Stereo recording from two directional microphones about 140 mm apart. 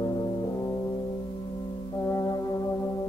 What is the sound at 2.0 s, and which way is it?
Brass instrument, 25° left (ahead or behind).